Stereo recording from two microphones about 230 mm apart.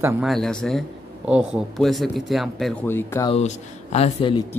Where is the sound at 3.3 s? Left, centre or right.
Left.